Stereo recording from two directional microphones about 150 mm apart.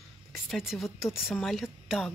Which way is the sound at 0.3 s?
Centre (ahead or behind).